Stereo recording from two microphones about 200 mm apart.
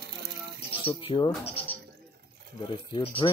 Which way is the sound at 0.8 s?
25° left (ahead or behind).